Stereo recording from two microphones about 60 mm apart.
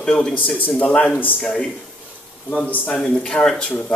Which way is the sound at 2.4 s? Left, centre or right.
Left.